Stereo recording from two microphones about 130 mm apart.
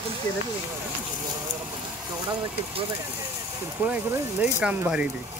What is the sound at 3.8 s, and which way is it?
Speech, 10° right (ahead or behind).